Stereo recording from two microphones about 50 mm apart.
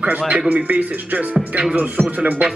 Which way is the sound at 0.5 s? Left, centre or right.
Right.